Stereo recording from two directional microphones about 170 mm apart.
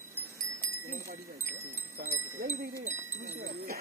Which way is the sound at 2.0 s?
55° right (ahead or behind).